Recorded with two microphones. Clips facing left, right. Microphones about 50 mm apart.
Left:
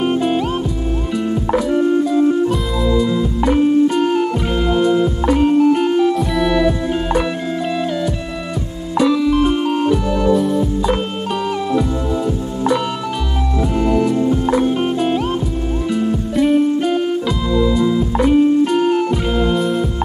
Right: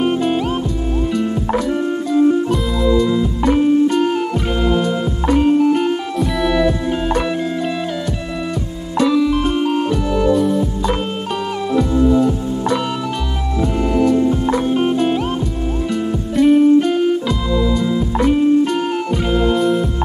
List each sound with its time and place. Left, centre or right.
0.0 s music: centre
8.9 s music: centre
13.8 s music: centre